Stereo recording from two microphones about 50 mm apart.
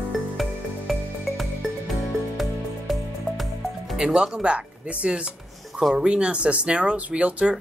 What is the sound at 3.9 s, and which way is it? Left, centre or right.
Speech, centre.